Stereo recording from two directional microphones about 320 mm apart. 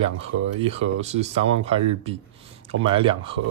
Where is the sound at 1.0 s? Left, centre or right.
Centre.